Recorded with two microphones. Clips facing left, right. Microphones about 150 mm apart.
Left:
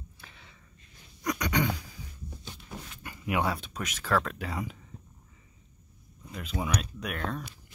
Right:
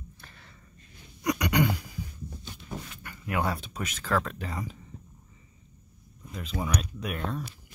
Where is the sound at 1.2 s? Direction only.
10° right (ahead or behind).